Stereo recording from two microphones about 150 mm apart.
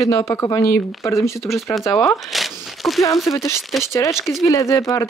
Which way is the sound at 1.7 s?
Centre (ahead or behind).